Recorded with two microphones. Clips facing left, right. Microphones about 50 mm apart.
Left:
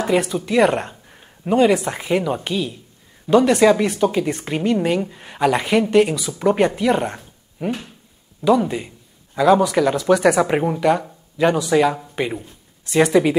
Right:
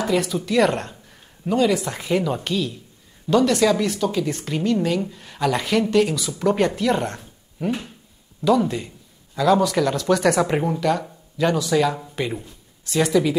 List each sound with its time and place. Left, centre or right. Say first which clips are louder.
0.0 s speech: left 3 dB; left
12.2 s music: left 3 dB; centre
12.9 s speech: left 4 dB; left